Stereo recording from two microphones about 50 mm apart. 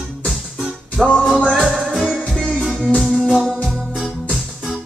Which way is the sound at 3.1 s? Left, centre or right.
Centre.